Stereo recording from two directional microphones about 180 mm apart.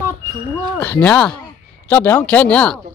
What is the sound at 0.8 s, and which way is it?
Speech, 10° left (ahead or behind).